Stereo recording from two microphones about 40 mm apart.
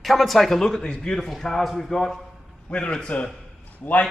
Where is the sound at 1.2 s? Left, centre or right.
Centre.